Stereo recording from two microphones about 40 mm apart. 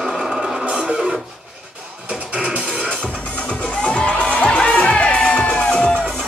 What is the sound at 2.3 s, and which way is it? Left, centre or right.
Music, right.